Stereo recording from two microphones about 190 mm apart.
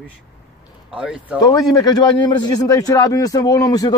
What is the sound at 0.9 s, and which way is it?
Speech, 5° right (ahead or behind).